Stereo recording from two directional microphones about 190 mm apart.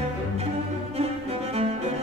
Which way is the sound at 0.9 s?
35° right (ahead or behind).